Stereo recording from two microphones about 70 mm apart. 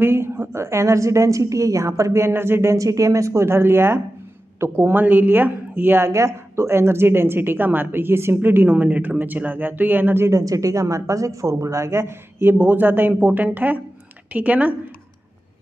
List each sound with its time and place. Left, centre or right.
0.0 s a woman's voice: right
10.4 s a woman's voice: right